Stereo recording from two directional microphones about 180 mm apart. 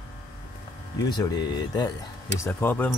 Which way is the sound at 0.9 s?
20° left (ahead or behind).